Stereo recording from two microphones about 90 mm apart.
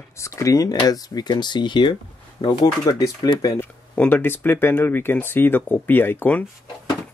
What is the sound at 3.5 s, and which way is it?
Speech, 20° left (ahead or behind).